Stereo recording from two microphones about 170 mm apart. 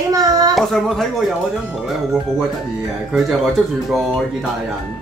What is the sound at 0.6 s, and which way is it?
Speech, centre (ahead or behind).